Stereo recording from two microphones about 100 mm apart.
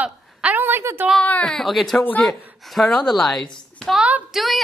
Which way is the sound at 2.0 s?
15° left (ahead or behind).